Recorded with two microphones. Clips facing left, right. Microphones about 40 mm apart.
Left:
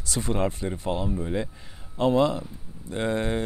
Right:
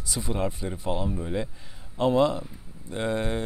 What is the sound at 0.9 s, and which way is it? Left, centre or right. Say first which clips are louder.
Speech: left 1 dB; centre.